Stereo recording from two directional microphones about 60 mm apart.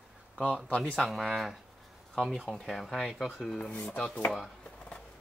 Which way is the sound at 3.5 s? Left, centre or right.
Centre.